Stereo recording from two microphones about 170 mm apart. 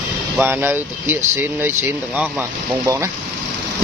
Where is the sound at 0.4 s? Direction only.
10° right (ahead or behind).